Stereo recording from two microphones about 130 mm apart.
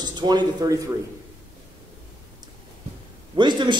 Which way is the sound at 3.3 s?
35° right (ahead or behind).